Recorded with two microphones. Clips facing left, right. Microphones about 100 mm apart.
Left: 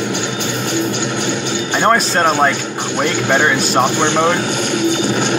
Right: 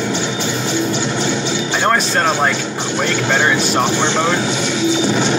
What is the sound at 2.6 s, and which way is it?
Music, 55° left (ahead or behind).